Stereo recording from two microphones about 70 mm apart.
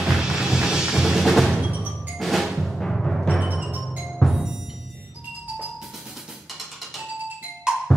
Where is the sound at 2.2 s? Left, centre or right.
Centre.